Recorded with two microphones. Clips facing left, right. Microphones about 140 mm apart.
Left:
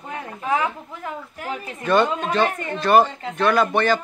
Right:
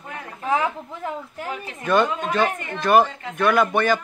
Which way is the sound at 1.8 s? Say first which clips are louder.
Left 1 dB; 5° right (ahead or behind).